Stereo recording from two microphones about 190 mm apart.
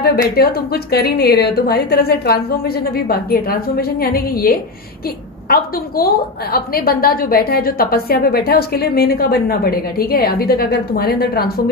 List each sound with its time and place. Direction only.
0.4 s a woman's voice: 55° left (ahead or behind)